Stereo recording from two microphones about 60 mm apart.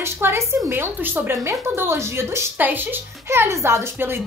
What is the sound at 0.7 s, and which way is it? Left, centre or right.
Speech, right.